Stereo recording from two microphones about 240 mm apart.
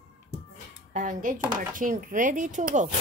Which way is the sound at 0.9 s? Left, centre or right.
Right.